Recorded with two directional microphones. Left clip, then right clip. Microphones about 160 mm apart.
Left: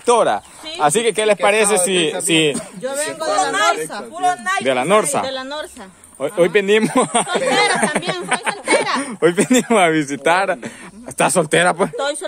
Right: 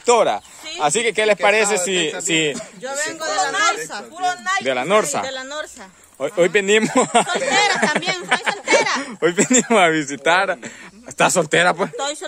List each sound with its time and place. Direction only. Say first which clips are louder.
0.0 s speech: left 1 dB; centre (ahead or behind)
0.7 s speech: left 3 dB; 15° right (ahead or behind)
2.8 s speech: left 1 dB; 30° right (ahead or behind)
4.6 s speech: left 3 dB; 15° right (ahead or behind)
6.2 s speech: left 1 dB; 60° right (ahead or behind)
7.2 s speech: left 2 dB; 25° right (ahead or behind)
7.5 s speech: right 1 dB; 35° right (ahead or behind)
9.0 s speech: left 2 dB; 15° right (ahead or behind)
10.3 s speech: right 1 dB; centre (ahead or behind)
12.0 s speech: left 4 dB; 30° right (ahead or behind)